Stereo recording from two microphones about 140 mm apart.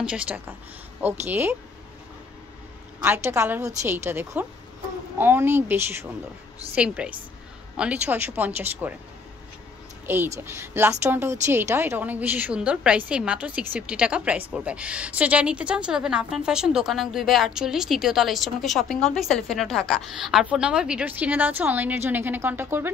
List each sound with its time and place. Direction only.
0.0 s a woman's voice: 10° right (ahead or behind)
3.0 s a woman's voice: 15° right (ahead or behind)
10.0 s a woman's voice: 15° right (ahead or behind)